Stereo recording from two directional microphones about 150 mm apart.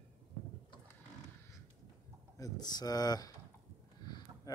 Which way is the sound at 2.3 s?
25° left (ahead or behind).